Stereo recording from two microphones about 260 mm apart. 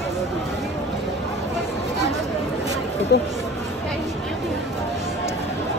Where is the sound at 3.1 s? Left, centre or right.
Left.